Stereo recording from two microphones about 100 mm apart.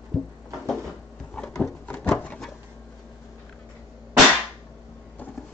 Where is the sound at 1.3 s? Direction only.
5° left (ahead or behind).